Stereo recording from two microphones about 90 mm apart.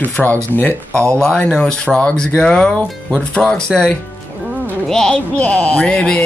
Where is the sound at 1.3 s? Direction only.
10° left (ahead or behind).